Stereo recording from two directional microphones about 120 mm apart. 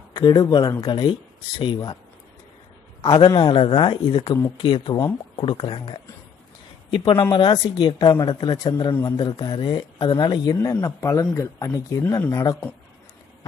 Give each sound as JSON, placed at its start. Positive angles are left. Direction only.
{"t": 0.1, "sound": "speech", "side_deg": 35}
{"t": 3.0, "sound": "a man's voice", "side_deg": 40}
{"t": 4.9, "sound": "speech", "side_deg": 20}
{"t": 5.4, "sound": "a man's voice", "side_deg": 50}